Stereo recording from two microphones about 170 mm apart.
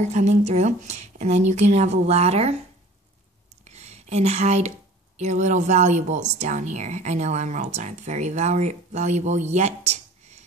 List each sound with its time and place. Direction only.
0.0 s speech: 40° right (ahead or behind)
3.6 s speech: 40° right (ahead or behind)